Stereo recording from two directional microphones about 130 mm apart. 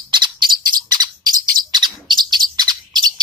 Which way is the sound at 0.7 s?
30° right (ahead or behind).